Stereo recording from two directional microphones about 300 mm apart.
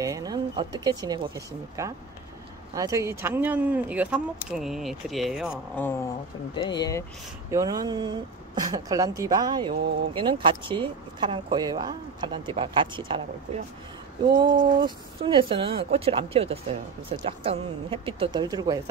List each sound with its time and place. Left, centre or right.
0.0 s speech: centre
6.5 s speech: centre
7.5 s speech: centre
14.3 s speech: centre